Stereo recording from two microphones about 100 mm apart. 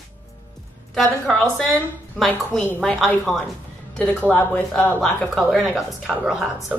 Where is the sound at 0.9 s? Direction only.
Centre (ahead or behind).